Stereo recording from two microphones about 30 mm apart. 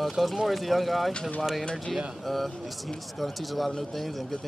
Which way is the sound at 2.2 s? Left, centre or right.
Centre.